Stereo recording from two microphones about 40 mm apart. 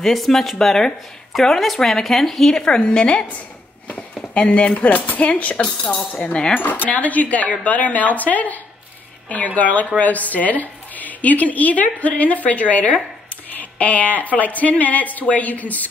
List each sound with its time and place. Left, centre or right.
0.0 s speech: centre
1.3 s speech: centre
2.6 s a woman's voice: left
3.8 s a sound: left
4.7 s a woman's voice: left
6.5 s a woman's voice: left